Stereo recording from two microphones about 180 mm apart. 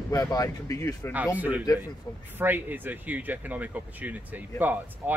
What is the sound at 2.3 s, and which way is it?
Speech, 10° right (ahead or behind).